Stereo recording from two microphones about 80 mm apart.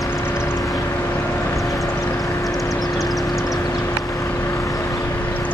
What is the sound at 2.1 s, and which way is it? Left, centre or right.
Vehicle, left.